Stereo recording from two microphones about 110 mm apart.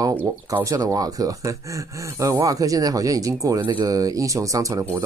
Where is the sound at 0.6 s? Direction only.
30° right (ahead or behind).